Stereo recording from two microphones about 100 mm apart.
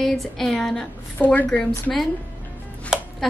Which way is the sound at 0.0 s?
Centre (ahead or behind).